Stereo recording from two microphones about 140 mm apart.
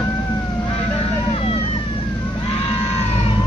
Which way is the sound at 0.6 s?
40° left (ahead or behind).